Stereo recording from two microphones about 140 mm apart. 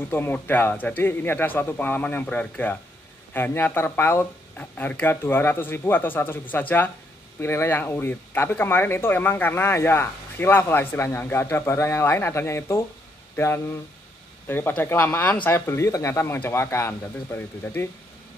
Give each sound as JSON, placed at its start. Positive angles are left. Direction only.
{"t": 0.1, "sound": "speech", "side_deg": 15}